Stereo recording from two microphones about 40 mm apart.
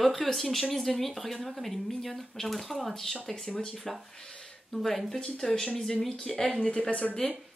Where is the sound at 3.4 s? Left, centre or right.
Centre.